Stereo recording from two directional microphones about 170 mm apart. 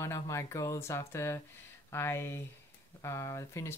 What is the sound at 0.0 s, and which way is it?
Speech, 15° left (ahead or behind).